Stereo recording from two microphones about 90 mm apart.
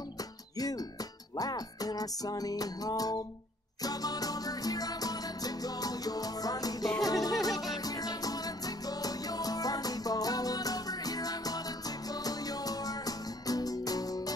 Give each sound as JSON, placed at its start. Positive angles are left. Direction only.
{"t": 0.6, "sound": "music", "side_deg": 45}